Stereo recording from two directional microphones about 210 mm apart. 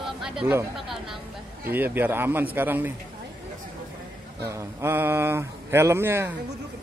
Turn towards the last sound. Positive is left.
turn(degrees=-10)  # may be behind; listen again after turning